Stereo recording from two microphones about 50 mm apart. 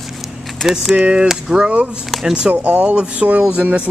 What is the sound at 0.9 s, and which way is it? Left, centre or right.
Speech, right.